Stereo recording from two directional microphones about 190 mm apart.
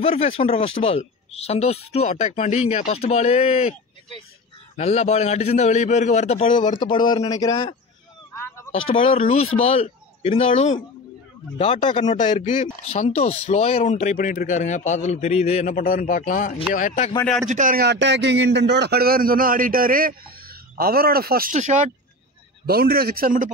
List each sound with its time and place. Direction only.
0.0 s speech: 30° left (ahead or behind)
4.7 s speech: 35° left (ahead or behind)
8.8 s speech: 30° left (ahead or behind)
17.2 s speech: 5° left (ahead or behind)
17.5 s a man's voice: 45° right (ahead or behind)
17.8 s a man's voice: 65° right (ahead or behind); by 21.9 s 40° right (ahead or behind)
22.7 s a man's voice: 55° right (ahead or behind)